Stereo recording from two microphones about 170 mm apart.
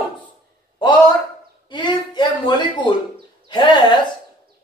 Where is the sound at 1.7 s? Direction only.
25° left (ahead or behind).